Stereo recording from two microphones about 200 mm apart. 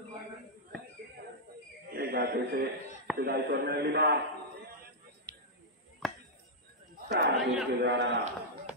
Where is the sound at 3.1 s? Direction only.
50° right (ahead or behind).